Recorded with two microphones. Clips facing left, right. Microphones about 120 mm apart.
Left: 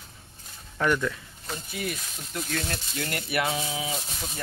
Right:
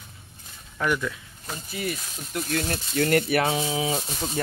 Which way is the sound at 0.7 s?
5° right (ahead or behind).